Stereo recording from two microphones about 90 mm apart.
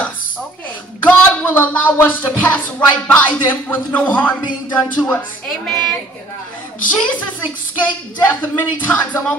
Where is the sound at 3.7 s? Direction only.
15° left (ahead or behind).